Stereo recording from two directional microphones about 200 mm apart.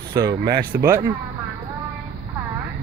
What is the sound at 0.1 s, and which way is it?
Speech, 15° right (ahead or behind).